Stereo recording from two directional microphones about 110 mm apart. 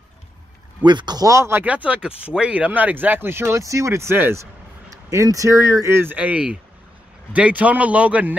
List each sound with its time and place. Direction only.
0.8 s speech: 40° right (ahead or behind); by 8.4 s 10° right (ahead or behind)